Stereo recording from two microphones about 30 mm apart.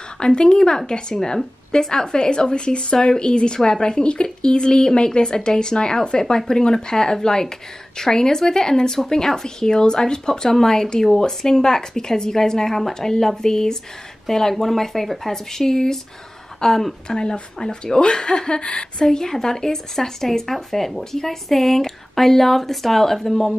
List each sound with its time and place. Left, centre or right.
0.2 s speech: left
18.9 s speech: centre
21.0 s speech: centre